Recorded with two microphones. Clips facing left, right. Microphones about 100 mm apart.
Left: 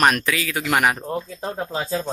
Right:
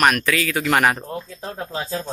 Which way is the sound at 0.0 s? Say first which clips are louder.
Right 1 dB; 20° left (ahead or behind).